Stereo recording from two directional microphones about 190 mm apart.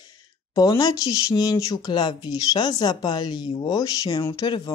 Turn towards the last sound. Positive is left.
turn(degrees=20)  # may be behind; listen again after turning